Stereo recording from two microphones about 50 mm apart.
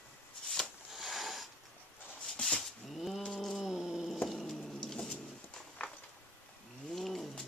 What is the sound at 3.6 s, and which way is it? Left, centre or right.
Cat, centre.